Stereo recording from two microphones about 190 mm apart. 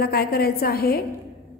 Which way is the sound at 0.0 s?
55° left (ahead or behind).